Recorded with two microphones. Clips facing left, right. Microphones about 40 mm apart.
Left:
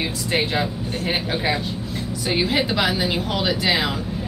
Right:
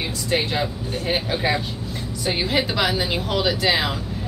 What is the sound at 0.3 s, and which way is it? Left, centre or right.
Speech, centre.